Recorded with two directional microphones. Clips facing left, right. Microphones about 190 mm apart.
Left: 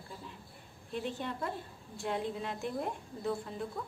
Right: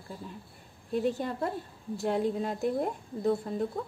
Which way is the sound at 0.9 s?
45° right (ahead or behind).